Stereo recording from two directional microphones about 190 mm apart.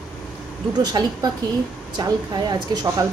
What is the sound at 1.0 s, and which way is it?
A woman's voice, 20° right (ahead or behind).